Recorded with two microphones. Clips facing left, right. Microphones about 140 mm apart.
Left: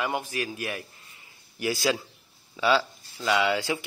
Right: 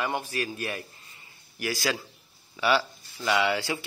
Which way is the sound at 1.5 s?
20° left (ahead or behind).